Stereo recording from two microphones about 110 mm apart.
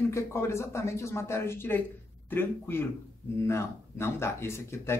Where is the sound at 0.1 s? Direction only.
25° left (ahead or behind).